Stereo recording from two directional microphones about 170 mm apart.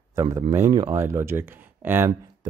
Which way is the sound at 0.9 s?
15° right (ahead or behind).